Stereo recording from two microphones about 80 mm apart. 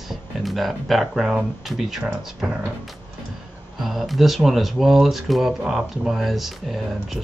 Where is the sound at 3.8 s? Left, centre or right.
Centre.